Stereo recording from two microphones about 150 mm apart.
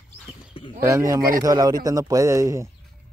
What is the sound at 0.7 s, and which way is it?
Speech, 20° right (ahead or behind).